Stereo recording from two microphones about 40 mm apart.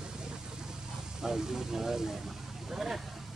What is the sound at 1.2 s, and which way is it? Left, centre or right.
Speech, centre.